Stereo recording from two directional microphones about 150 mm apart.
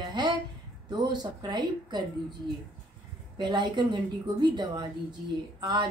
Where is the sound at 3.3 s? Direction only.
30° right (ahead or behind).